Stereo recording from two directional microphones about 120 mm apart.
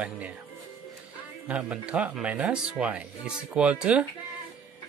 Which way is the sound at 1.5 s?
10° right (ahead or behind).